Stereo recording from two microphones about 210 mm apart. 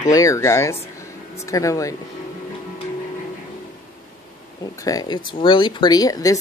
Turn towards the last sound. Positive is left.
turn(degrees=15)  # may be behind; listen again after turning